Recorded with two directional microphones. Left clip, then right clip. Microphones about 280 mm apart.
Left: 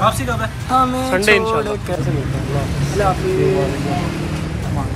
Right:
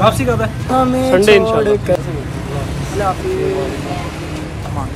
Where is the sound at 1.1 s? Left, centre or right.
Centre.